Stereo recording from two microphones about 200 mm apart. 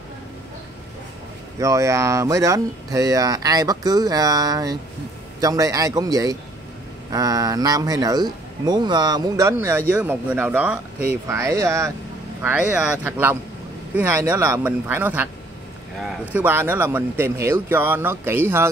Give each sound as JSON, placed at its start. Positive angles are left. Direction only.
{"t": 1.6, "sound": "speech", "side_deg": -15}
{"t": 13.0, "sound": "speech", "side_deg": -10}